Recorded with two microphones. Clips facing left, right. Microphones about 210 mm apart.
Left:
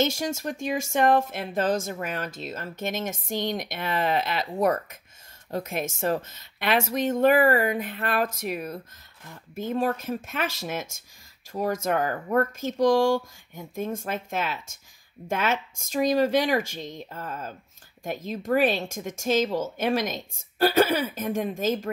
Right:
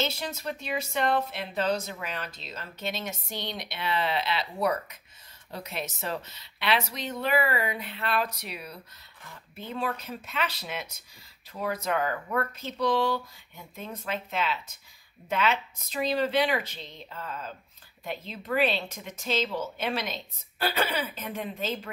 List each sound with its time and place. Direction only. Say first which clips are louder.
0.0 s speech: left 6 dB; 45° left (ahead or behind)